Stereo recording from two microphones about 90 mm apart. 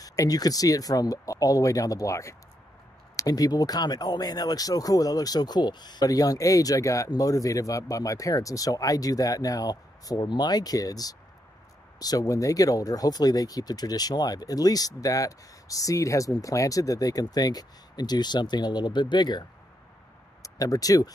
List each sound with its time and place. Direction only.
0.0 s speech: 40° left (ahead or behind)
20.4 s speech: 40° left (ahead or behind)